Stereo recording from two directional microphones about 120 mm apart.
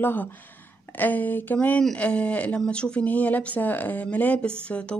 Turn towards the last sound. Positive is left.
turn(degrees=10)  # may be behind; listen again after turning